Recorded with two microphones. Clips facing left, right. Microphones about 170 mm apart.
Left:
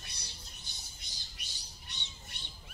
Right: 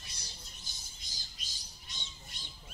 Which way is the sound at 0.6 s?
65° left (ahead or behind).